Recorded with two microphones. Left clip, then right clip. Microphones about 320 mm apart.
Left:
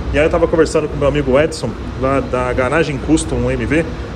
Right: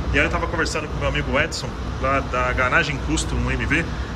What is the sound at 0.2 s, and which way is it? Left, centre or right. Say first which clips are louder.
Speech: left 10 dB; centre.